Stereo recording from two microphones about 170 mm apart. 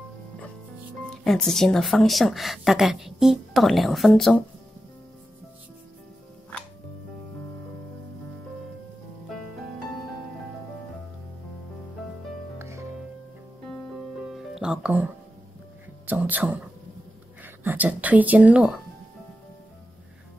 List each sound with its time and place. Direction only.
1.1 s a woman's voice: 5° left (ahead or behind)
12.5 s music: 15° right (ahead or behind)
13.7 s music: centre (ahead or behind)
16.1 s a sound: 10° right (ahead or behind)
17.4 s speech: 10° right (ahead or behind)